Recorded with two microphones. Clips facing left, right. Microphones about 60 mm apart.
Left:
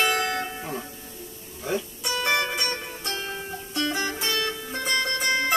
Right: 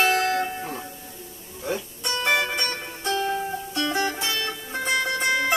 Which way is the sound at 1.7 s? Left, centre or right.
Centre.